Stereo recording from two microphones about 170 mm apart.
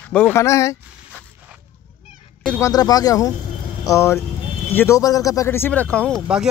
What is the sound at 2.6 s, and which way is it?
Speech, 20° left (ahead or behind).